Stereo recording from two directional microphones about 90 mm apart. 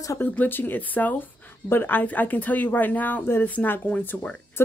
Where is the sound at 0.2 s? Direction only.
20° left (ahead or behind).